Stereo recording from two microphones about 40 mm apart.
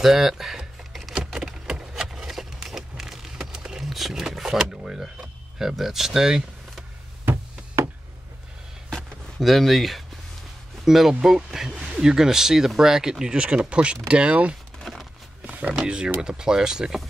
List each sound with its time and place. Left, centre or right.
0.0 s computer keyboard: centre
1.1 s a sound: centre
3.9 s vehicle: centre
4.2 s speech: centre
9.4 s speech: centre
13.2 s speech: right
14.8 s a sound: centre
15.4 s a sound: right
16.2 s speech: centre